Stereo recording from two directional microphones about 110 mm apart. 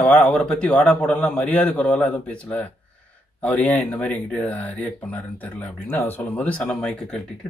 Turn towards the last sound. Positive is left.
turn(degrees=5)  # may be behind; listen again after turning